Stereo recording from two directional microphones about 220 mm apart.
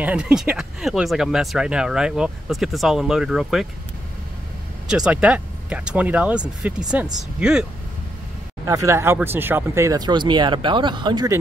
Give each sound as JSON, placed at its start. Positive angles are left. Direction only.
{"t": 0.0, "sound": "speech", "side_deg": -5}
{"t": 4.8, "sound": "speech", "side_deg": -5}
{"t": 8.6, "sound": "speech", "side_deg": -15}